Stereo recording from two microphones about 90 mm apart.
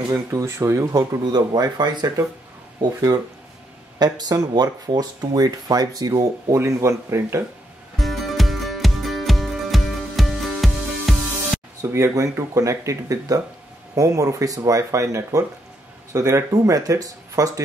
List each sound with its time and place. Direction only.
0.1 s speech: 30° right (ahead or behind)
1.2 s speech: 50° right (ahead or behind); by 7.4 s 30° right (ahead or behind)
8.0 s music: centre (ahead or behind)
11.8 s speech: 30° right (ahead or behind)